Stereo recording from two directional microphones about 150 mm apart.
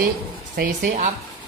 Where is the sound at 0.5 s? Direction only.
65° right (ahead or behind).